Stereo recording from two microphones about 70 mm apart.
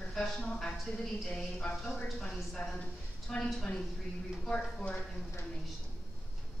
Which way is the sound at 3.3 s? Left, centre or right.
Centre.